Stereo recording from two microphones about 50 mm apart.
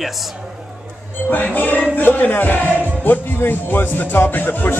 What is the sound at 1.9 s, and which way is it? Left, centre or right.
Music, left.